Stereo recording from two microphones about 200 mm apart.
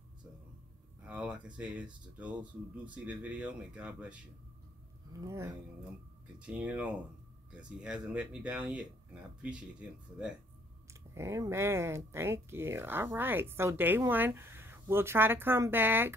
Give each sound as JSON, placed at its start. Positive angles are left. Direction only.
{"t": 1.0, "sound": "speech", "side_deg": -5}
{"t": 5.1, "sound": "speech", "side_deg": -15}
{"t": 6.4, "sound": "speech", "side_deg": -5}